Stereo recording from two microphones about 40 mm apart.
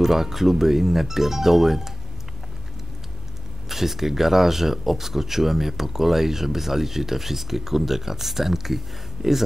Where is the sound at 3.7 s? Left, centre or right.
Centre.